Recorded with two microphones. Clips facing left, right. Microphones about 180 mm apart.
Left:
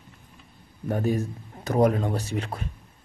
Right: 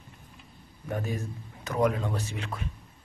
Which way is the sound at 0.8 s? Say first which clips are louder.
Left 7 dB; 35° left (ahead or behind).